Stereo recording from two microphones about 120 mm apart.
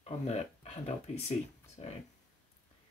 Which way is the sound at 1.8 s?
45° left (ahead or behind).